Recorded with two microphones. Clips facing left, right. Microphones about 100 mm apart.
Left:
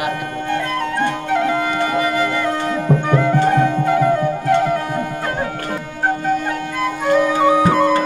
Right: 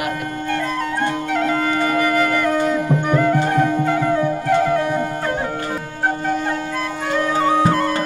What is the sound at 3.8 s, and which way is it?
Music, 10° left (ahead or behind).